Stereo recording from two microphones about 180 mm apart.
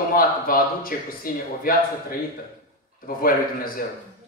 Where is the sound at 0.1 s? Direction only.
55° left (ahead or behind).